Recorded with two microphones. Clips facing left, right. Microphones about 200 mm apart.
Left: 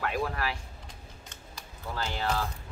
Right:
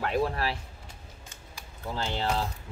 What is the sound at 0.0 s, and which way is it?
Speech, 30° right (ahead or behind).